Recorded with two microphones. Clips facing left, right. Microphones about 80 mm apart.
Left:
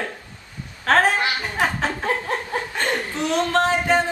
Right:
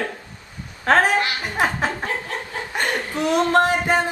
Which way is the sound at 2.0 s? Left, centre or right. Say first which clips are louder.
Left 3 dB; left.